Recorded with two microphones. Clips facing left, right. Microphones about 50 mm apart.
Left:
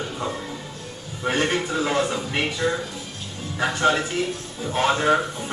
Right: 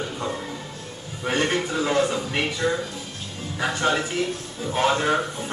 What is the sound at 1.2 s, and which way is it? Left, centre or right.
Music, centre.